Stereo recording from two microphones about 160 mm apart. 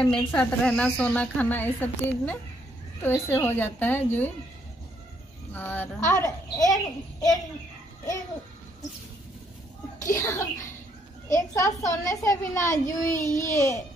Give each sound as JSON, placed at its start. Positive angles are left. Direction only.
{"t": 0.0, "sound": "a woman's voice", "side_deg": 5}
{"t": 5.5, "sound": "a woman's voice", "side_deg": 10}
{"t": 10.1, "sound": "a child's voice", "side_deg": 20}